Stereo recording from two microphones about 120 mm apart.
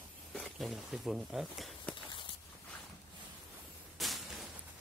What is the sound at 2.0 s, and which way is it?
Walk, 45° left (ahead or behind).